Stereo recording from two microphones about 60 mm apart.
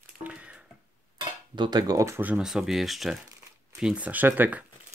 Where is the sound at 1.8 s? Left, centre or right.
Right.